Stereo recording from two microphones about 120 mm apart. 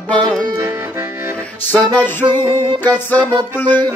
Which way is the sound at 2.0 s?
15° left (ahead or behind).